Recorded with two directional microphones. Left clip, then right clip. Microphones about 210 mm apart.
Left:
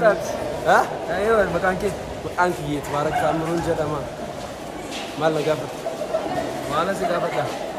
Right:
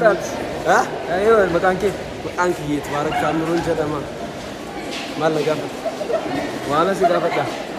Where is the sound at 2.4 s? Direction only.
20° left (ahead or behind).